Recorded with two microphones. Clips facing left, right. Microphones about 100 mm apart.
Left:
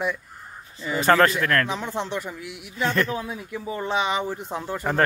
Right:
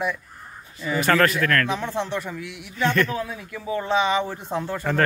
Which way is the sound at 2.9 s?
30° left (ahead or behind).